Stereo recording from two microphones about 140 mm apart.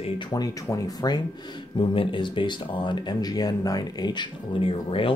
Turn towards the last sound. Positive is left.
turn(degrees=40)  # may be behind; listen again after turning